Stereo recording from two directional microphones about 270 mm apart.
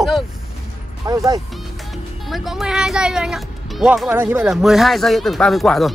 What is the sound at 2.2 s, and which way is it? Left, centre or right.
Speech, centre.